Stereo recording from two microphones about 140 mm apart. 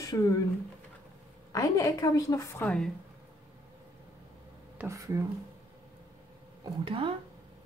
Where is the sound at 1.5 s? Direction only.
25° left (ahead or behind).